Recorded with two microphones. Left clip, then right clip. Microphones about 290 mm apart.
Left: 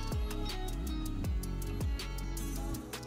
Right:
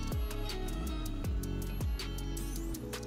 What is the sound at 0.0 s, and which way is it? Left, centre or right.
Music, centre.